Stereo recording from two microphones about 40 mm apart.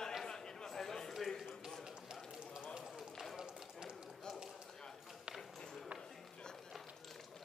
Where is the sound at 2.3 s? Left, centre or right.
Centre.